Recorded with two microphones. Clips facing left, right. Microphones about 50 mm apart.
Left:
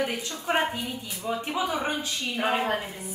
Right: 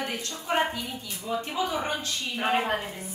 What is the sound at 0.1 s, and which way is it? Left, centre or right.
A woman's voice, centre.